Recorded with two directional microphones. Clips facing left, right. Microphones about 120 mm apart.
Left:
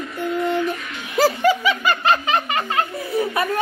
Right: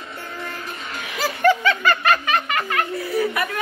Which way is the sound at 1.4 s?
10° left (ahead or behind).